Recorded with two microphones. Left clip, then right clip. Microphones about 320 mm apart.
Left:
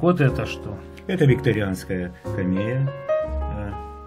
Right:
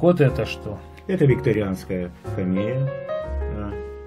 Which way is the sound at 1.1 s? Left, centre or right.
Left.